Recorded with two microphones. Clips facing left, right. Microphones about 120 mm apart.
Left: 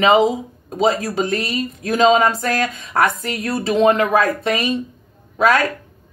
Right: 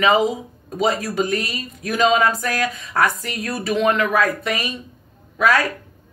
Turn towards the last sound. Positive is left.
turn(degrees=25)  # may be behind; listen again after turning